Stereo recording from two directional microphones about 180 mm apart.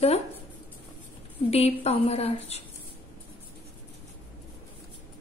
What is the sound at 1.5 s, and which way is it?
A woman's voice, 35° left (ahead or behind).